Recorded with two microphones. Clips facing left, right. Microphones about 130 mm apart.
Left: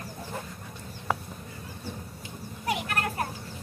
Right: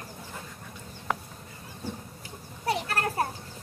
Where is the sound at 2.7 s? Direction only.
35° right (ahead or behind).